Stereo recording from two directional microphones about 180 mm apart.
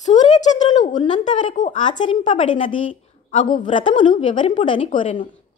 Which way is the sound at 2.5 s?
30° left (ahead or behind).